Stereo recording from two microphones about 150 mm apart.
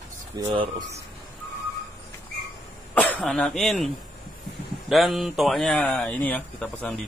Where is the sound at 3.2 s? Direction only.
5° left (ahead or behind).